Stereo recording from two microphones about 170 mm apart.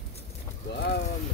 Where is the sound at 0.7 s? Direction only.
90° left.